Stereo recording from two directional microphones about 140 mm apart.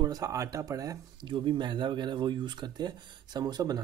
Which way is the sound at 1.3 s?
35° right (ahead or behind).